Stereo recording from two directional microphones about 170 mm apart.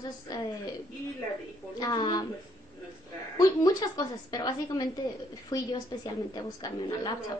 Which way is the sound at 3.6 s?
25° left (ahead or behind).